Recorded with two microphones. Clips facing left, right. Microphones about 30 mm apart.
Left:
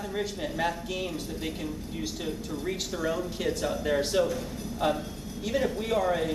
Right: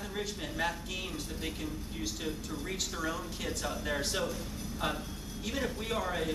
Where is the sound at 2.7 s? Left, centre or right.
Centre.